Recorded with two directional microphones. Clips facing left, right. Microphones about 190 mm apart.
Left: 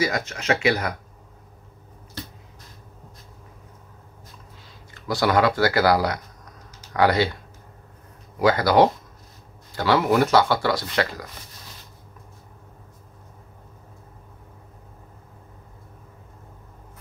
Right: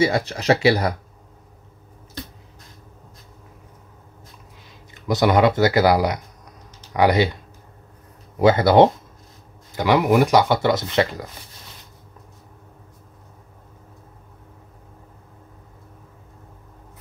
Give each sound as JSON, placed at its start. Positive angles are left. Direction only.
{"t": 0.0, "sound": "speech", "side_deg": -30}
{"t": 4.9, "sound": "speech", "side_deg": -20}
{"t": 8.4, "sound": "speech", "side_deg": -25}